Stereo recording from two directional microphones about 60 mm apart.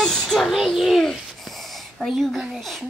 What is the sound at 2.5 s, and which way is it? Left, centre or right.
Speech, centre.